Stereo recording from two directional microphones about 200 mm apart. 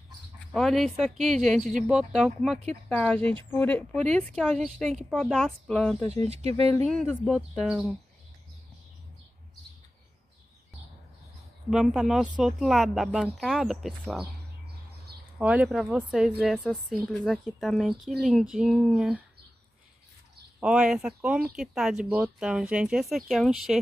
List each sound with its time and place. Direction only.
0.5 s a woman's voice: centre (ahead or behind)
1.6 s speech: 40° right (ahead or behind)
1.9 s a woman's voice: 5° right (ahead or behind)
3.2 s speech: 30° right (ahead or behind)
3.4 s a woman's voice: 10° left (ahead or behind)
6.2 s speech: 30° right (ahead or behind)
6.9 s a woman's voice: 5° left (ahead or behind)
11.7 s a woman's voice: centre (ahead or behind)
15.3 s a woman's voice: 5° right (ahead or behind)
20.6 s a woman's voice: 5° right (ahead or behind)